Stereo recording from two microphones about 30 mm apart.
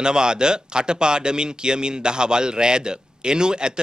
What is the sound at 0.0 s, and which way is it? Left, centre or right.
A man's voice, right.